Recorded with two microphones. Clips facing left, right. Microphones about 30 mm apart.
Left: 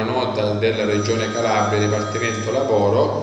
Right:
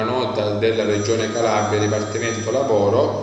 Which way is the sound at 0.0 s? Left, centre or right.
Centre.